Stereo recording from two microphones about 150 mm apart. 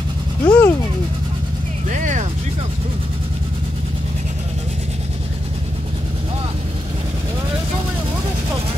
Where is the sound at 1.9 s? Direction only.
55° right (ahead or behind).